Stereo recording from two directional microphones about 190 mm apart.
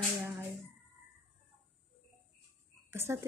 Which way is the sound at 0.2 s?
10° right (ahead or behind).